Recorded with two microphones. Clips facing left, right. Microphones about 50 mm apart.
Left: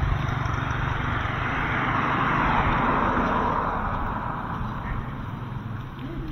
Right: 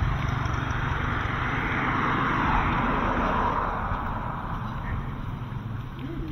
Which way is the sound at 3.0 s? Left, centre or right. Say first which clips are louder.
Left 2 dB; centre.